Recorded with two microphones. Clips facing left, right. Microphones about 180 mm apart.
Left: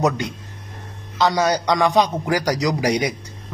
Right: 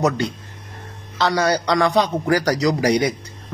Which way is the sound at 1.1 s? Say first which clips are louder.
Even; 15° left (ahead or behind).